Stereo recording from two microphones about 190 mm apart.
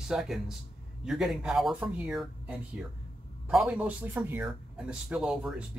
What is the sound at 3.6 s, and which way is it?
Speech, 5° right (ahead or behind).